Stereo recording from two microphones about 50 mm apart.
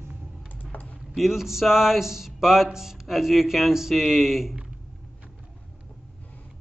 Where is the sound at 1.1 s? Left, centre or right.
Centre.